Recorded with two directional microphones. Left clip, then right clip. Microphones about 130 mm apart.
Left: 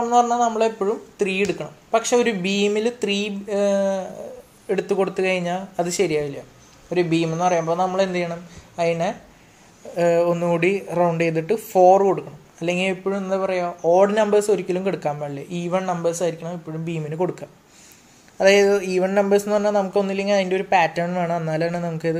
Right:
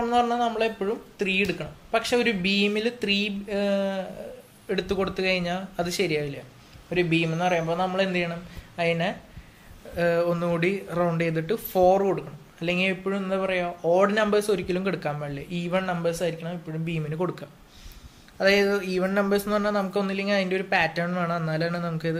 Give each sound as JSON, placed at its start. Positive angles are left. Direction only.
{"t": 0.0, "sound": "speech", "side_deg": 20}
{"t": 18.4, "sound": "speech", "side_deg": 30}